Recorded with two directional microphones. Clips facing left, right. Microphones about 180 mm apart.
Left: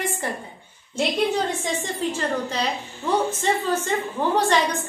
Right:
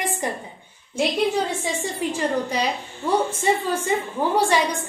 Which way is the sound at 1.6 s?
10° right (ahead or behind).